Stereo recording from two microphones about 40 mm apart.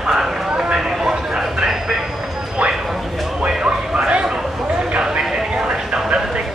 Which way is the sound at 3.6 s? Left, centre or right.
Right.